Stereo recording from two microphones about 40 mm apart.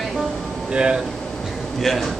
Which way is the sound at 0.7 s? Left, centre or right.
Right.